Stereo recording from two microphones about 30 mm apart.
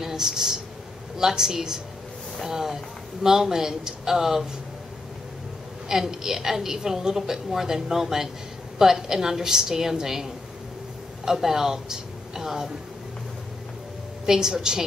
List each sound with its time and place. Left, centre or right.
0.0 s a woman's voice: centre
5.9 s a woman's voice: centre
14.2 s a woman's voice: centre